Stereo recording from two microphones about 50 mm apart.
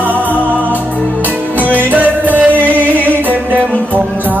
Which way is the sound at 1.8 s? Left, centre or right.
Right.